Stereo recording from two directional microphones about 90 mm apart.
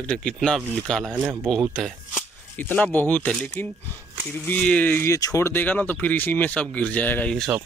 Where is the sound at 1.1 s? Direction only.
10° right (ahead or behind).